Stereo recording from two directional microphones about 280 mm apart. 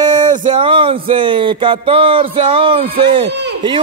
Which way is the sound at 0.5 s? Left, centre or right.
Centre.